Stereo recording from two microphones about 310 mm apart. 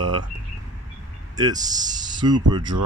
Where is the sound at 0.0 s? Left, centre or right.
Right.